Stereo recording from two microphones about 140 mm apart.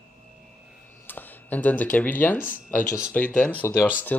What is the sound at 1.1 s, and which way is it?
Speech, 15° left (ahead or behind).